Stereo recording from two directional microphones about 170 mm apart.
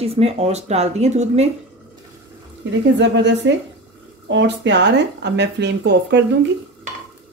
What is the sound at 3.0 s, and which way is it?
Speech, 90° right.